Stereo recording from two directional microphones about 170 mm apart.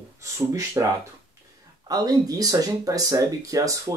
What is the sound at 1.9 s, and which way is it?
Speech, 25° right (ahead or behind).